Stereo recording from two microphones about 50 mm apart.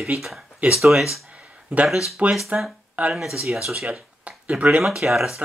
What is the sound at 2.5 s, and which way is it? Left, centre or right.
Speech, right.